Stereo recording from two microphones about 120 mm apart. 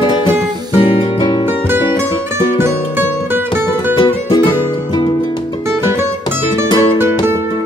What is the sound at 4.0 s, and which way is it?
Music, 45° left (ahead or behind).